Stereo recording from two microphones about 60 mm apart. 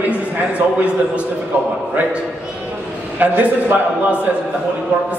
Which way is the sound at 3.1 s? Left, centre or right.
Right.